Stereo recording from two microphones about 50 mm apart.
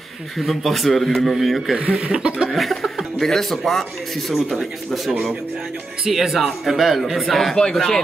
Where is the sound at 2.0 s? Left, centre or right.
Right.